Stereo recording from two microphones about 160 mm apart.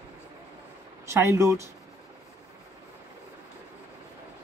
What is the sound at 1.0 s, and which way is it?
Speech, 15° right (ahead or behind).